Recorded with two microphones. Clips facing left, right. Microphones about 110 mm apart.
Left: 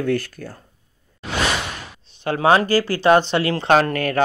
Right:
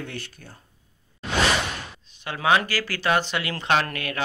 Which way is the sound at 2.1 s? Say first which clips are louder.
Left 6 dB; 35° left (ahead or behind).